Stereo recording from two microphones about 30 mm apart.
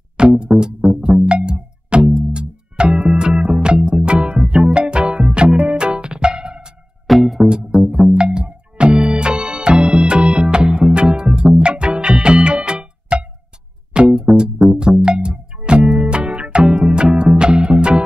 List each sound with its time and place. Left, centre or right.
0.2 s music: right
7.1 s music: centre
7.4 s music: right